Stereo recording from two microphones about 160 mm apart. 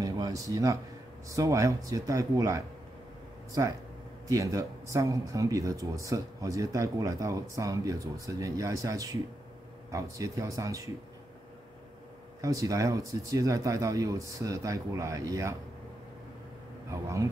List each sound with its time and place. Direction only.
0.0 s a sound: 25° right (ahead or behind)
1.3 s speech: 20° right (ahead or behind)
12.4 s speech: 20° right (ahead or behind)
16.9 s speech: 20° right (ahead or behind)